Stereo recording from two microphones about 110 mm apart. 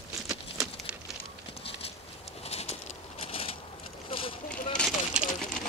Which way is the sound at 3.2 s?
60° left (ahead or behind).